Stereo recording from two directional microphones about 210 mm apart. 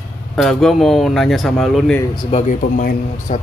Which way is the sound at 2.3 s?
40° left (ahead or behind).